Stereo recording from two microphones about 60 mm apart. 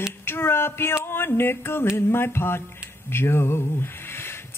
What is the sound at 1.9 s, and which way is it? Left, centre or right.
Music, left.